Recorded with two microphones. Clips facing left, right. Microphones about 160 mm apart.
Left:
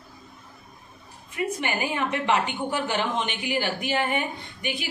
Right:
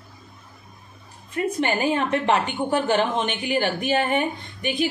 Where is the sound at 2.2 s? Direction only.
55° right (ahead or behind).